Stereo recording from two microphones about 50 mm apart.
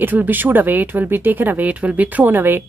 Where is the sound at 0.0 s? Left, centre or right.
Right.